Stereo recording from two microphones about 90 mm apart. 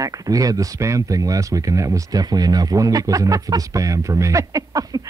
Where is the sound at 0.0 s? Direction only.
40° right (ahead or behind).